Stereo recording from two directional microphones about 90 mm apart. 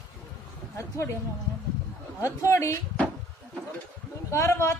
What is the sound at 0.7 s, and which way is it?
Speech, 30° left (ahead or behind).